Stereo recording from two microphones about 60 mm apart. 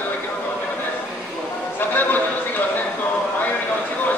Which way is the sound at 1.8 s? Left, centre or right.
Left.